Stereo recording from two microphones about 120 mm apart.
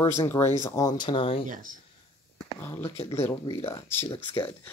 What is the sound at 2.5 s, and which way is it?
Speech, 20° left (ahead or behind).